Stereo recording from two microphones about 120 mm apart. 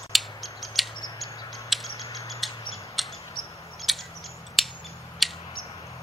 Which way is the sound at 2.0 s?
25° left (ahead or behind).